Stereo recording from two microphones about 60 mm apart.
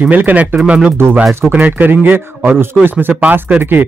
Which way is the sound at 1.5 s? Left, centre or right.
Right.